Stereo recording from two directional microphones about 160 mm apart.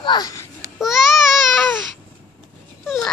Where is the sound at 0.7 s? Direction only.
Centre (ahead or behind).